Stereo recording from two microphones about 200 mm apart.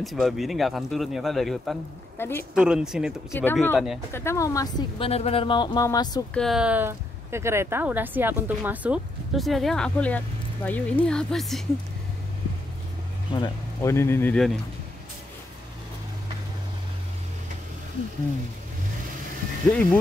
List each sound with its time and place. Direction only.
0.0 s a woman's voice: centre (ahead or behind)
2.1 s speech: 10° left (ahead or behind)
2.5 s a woman's voice: 5° right (ahead or behind)
3.3 s speech: 10° left (ahead or behind)
3.7 s a woman's voice: centre (ahead or behind)
4.1 s speech: 15° left (ahead or behind)
6.3 s a woman's voice: centre (ahead or behind)
13.3 s speech: 20° left (ahead or behind)
19.7 s speech: 5° left (ahead or behind)